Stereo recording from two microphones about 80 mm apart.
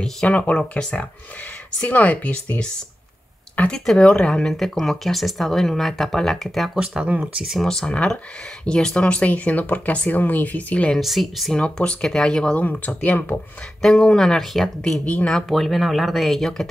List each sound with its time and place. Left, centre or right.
0.3 s speech: centre
3.7 s speech: centre
7.5 s speech: centre
11.0 s speech: centre
11.5 s speech: centre
13.7 s speech: centre